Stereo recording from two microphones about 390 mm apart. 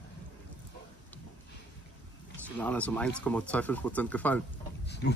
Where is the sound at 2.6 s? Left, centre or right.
Centre.